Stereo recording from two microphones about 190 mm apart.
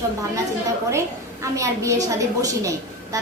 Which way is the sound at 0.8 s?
15° right (ahead or behind).